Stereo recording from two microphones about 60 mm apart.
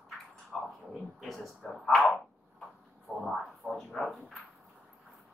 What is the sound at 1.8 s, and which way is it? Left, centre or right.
Bow-wow, centre.